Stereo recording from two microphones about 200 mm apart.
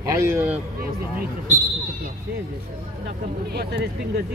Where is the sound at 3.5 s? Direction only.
55° right (ahead or behind).